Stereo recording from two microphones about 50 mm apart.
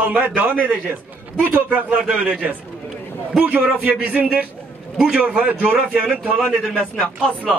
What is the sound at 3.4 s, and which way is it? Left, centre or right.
A man's voice, right.